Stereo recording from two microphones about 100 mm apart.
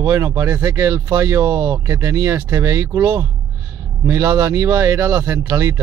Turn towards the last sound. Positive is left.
turn(degrees=-30)  # may be behind; listen again after turning